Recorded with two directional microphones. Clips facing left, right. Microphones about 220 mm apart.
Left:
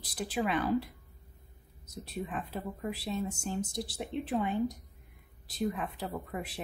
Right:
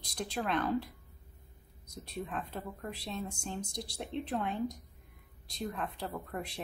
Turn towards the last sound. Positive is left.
turn(degrees=0)  # may be behind; listen again after turning